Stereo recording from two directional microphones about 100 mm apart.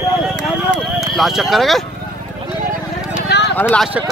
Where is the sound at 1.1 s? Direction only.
Centre (ahead or behind).